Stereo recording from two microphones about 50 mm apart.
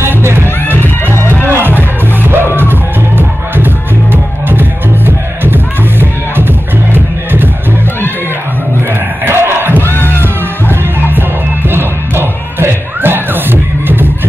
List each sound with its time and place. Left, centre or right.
0.0 s music: right
1.1 s music: left
1.5 s music: right
9.2 s crowd: right
9.9 s music: left
10.2 s music: right